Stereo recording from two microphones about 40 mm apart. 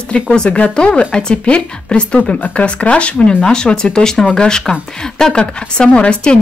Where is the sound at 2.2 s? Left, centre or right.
Left.